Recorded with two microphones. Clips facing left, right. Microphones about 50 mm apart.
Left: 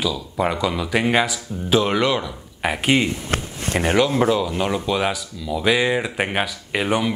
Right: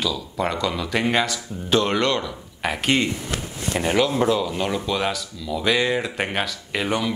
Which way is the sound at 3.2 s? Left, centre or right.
Left.